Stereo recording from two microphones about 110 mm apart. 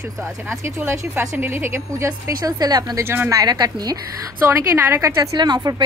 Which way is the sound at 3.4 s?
35° right (ahead or behind).